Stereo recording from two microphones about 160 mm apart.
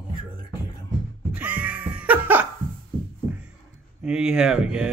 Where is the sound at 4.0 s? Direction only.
5° right (ahead or behind).